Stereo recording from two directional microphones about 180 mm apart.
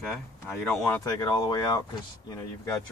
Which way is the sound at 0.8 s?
15° left (ahead or behind).